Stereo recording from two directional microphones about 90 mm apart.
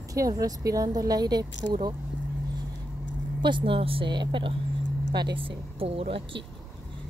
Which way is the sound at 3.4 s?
60° right (ahead or behind).